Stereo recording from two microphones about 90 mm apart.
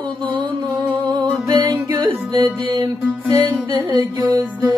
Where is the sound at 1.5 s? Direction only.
45° right (ahead or behind); by 2.9 s 65° right (ahead or behind).